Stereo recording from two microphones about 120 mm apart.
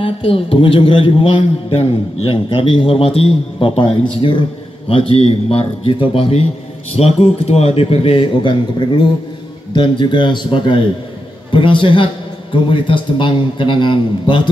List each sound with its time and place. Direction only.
0.0 s a man's voice: 50° left (ahead or behind)